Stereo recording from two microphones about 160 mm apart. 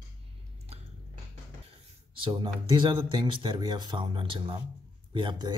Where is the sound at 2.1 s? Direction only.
30° right (ahead or behind).